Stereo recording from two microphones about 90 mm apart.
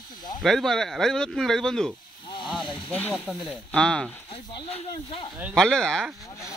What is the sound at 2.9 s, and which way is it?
Speech, 15° left (ahead or behind).